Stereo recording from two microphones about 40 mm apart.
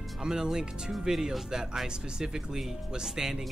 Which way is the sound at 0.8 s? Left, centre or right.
Centre.